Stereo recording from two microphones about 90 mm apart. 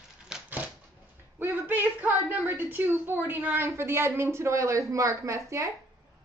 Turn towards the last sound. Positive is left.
turn(degrees=-35)  # may be behind; listen again after turning